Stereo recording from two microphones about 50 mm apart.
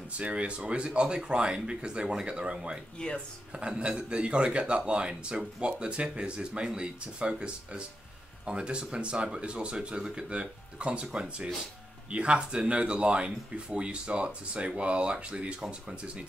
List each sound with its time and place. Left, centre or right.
0.2 s speech: right
3.0 s speech: centre
3.5 s speech: centre